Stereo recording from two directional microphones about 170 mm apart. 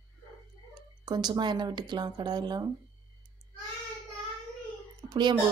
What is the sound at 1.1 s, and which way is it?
Speech, 25° right (ahead or behind).